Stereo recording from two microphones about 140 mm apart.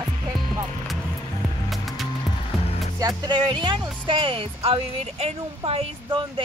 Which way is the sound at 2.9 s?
30° right (ahead or behind).